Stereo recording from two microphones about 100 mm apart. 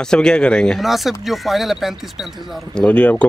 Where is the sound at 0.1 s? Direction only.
10° left (ahead or behind).